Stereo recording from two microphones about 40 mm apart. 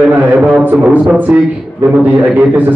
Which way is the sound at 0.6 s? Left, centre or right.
Right.